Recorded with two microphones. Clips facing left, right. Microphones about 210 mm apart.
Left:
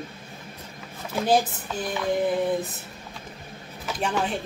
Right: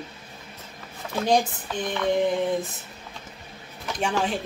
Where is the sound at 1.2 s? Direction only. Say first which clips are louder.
Even; 5° left (ahead or behind).